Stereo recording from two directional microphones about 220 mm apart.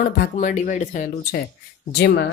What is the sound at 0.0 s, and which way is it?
Speech, 35° left (ahead or behind).